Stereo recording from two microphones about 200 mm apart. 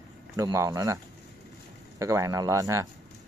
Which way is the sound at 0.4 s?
15° right (ahead or behind).